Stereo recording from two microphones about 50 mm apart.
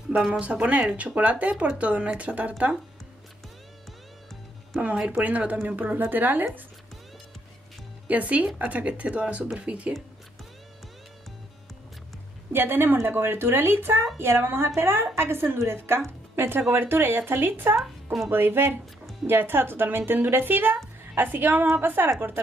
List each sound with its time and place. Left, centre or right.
0.3 s speech: right
4.8 s a woman's voice: right
8.1 s speech: right
12.5 s a woman's voice: right
16.3 s a woman's voice: right